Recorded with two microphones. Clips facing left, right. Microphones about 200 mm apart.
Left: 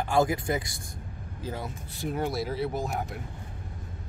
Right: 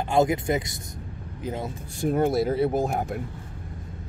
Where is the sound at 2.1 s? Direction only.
50° right (ahead or behind).